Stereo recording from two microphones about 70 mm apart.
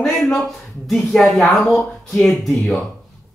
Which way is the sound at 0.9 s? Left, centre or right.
Centre.